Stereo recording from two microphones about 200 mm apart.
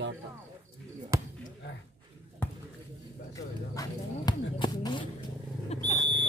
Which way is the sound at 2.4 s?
10° left (ahead or behind).